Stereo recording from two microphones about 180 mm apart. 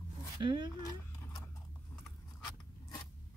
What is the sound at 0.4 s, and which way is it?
Speech, 25° right (ahead or behind).